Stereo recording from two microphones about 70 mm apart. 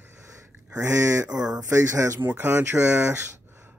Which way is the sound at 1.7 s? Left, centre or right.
Right.